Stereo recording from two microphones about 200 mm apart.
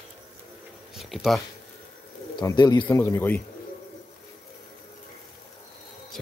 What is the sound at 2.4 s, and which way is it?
A man's voice, 20° left (ahead or behind).